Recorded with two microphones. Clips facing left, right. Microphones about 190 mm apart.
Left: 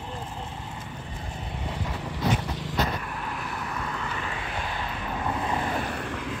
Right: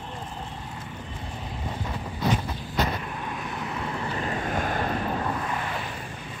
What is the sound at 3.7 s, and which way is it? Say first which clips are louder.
Vehicle: right 2 dB; 25° right (ahead or behind).